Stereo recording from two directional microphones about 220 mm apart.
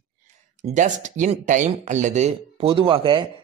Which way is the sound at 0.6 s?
35° right (ahead or behind).